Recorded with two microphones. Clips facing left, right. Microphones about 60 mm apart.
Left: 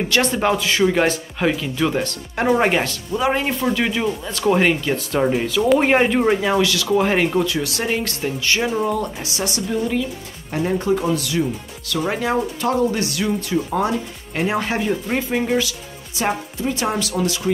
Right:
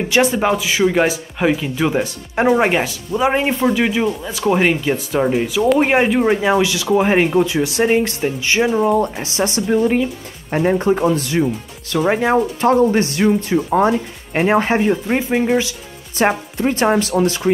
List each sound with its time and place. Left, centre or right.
0.1 s speech: centre
3.2 s speech: right
6.4 s speech: centre
14.9 s speech: right
16.2 s speech: right